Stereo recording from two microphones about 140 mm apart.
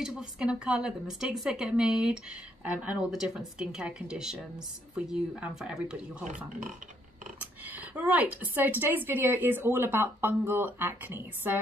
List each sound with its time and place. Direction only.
0.0 s speech: 5° right (ahead or behind)
6.2 s speech: 65° right (ahead or behind)
7.6 s a woman's voice: 10° right (ahead or behind)